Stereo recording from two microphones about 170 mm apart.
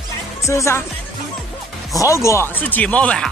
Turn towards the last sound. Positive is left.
turn(degrees=5)  # may be behind; listen again after turning